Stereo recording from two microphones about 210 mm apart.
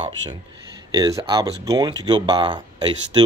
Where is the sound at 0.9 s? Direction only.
20° right (ahead or behind).